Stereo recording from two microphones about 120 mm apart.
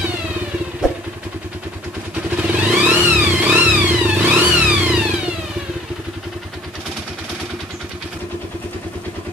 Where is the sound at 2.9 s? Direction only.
10° right (ahead or behind).